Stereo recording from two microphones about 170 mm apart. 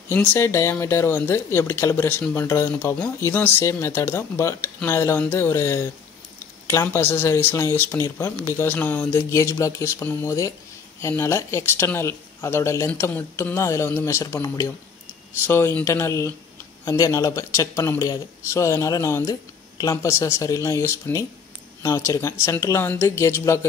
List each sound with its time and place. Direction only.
0.1 s speech: 10° left (ahead or behind)